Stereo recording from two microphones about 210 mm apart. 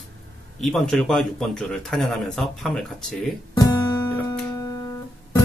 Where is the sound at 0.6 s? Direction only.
Centre (ahead or behind).